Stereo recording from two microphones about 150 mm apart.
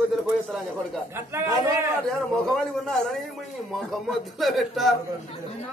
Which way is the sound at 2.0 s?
5° left (ahead or behind).